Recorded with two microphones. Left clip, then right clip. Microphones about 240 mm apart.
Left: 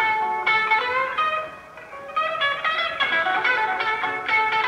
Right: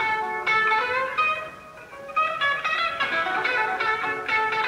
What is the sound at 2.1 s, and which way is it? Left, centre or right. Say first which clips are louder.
Music: even; left.